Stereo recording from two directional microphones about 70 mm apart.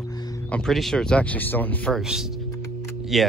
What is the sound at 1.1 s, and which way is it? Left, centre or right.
Speech, left.